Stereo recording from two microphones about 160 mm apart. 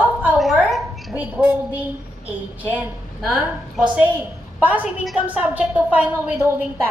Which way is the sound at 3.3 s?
10° right (ahead or behind).